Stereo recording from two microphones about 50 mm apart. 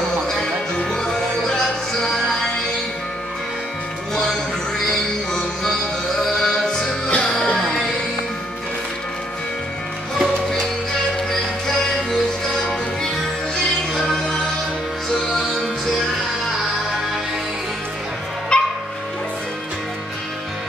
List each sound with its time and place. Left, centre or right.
0.7 s music: centre
4.1 s music: centre
11.6 s music: centre
18.5 s music: centre